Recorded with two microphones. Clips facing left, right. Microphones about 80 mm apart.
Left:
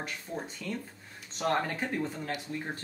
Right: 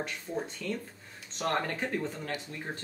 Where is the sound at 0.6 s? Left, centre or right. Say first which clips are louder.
Right 2 dB; centre.